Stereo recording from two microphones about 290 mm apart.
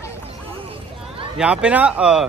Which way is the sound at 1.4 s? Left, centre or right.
Centre.